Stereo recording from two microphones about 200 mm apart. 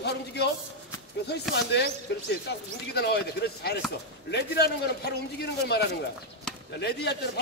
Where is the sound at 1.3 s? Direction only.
55° left (ahead or behind).